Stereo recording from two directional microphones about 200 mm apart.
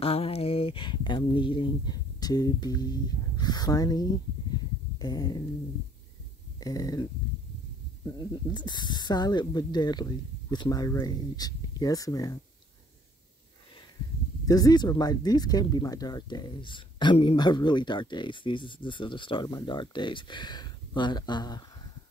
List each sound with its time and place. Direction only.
0.0 s speech: 30° left (ahead or behind)
4.9 s a sound: 20° left (ahead or behind)
6.6 s speech: 20° left (ahead or behind)
8.5 s speech: 20° left (ahead or behind)
14.4 s speech: 20° left (ahead or behind)